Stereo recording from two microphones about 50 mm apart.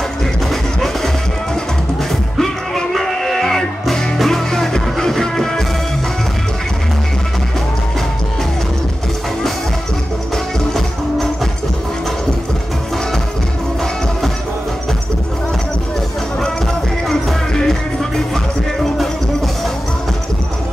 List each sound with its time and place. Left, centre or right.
0.5 s music: centre
10.3 s music: centre
17.1 s music: centre